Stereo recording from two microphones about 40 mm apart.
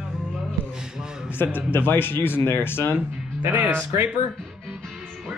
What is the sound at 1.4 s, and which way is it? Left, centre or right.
Speech, left.